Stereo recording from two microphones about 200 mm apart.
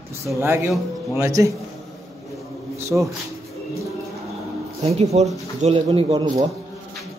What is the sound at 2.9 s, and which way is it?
Speech, 10° right (ahead or behind).